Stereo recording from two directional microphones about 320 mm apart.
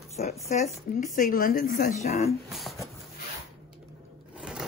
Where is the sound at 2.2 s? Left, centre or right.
Centre.